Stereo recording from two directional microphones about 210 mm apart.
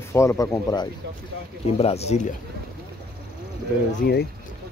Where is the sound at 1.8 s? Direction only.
30° left (ahead or behind).